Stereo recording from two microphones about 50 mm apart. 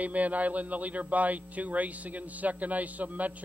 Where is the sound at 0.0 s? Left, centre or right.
Right.